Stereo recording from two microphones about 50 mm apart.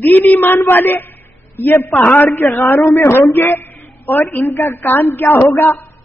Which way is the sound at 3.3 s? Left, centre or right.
Left.